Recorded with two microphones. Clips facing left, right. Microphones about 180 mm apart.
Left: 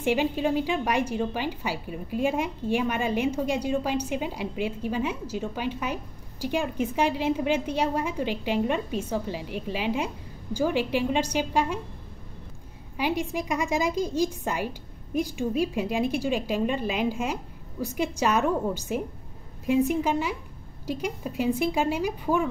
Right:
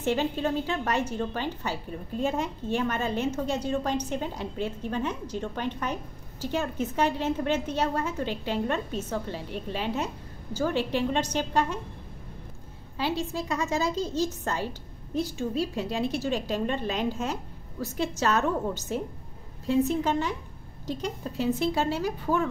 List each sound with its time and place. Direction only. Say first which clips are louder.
0.0 s a woman's voice: left 2 dB; 10° left (ahead or behind)
12.9 s a woman's voice: left 2 dB; 15° left (ahead or behind)